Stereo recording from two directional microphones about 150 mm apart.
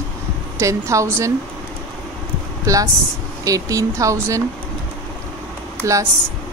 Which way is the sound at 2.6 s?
20° right (ahead or behind).